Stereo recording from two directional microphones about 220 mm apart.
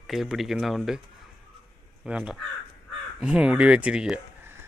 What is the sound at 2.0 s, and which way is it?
A man's voice, 5° right (ahead or behind).